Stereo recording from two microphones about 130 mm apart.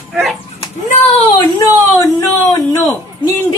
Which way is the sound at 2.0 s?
25° left (ahead or behind).